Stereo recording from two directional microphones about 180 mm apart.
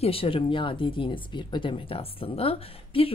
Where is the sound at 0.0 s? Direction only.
30° left (ahead or behind).